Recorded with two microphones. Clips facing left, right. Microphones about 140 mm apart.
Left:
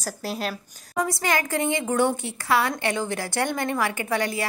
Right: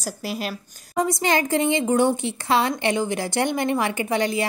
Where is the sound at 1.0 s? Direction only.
20° right (ahead or behind).